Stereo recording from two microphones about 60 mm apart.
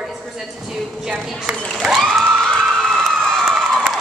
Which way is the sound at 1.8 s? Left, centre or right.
Centre.